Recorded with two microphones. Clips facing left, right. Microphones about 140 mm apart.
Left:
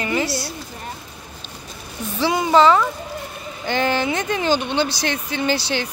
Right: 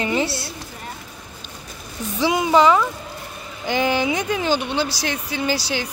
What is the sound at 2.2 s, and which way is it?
Speech, 15° right (ahead or behind).